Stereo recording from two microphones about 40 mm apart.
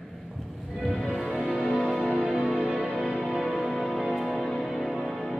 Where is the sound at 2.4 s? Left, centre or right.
Right.